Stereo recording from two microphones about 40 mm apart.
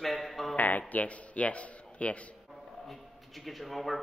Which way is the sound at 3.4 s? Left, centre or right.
Centre.